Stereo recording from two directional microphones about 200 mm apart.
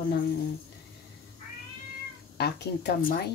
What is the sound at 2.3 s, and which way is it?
Speech, 55° left (ahead or behind).